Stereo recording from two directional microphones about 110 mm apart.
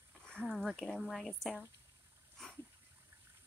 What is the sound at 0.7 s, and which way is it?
Speech, centre (ahead or behind).